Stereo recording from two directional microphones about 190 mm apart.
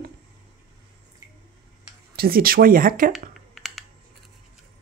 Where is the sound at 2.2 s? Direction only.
50° right (ahead or behind).